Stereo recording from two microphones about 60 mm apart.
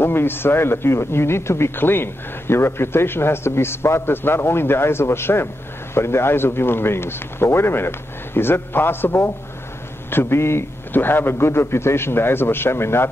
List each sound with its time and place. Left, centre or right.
0.0 s a man's voice: left